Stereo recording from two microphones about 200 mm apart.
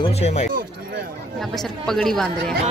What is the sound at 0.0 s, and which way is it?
Speech, 35° left (ahead or behind).